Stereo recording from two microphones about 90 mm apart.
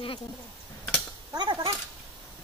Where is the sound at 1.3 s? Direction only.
55° right (ahead or behind).